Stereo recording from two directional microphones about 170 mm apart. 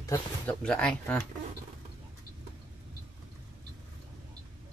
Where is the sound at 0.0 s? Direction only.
15° left (ahead or behind).